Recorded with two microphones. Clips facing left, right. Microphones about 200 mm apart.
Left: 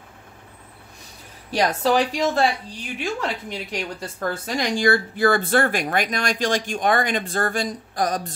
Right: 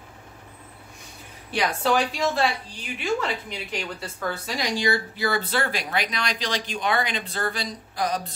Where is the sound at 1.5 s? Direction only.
40° left (ahead or behind).